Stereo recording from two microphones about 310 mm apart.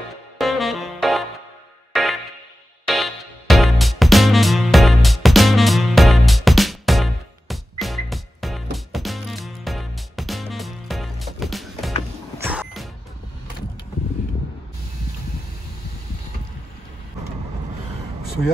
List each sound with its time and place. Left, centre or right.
0.4 s music: centre